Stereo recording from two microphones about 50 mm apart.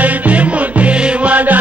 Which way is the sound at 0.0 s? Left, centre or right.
Right.